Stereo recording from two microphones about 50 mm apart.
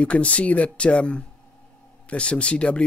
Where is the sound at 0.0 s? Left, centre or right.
Left.